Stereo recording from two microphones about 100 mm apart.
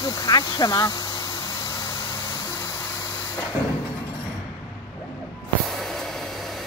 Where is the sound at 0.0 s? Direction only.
40° left (ahead or behind).